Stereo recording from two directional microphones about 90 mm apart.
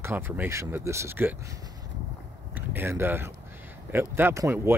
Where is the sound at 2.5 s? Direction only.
25° right (ahead or behind).